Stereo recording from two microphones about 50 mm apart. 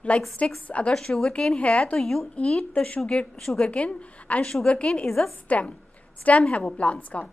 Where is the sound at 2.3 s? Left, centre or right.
Left.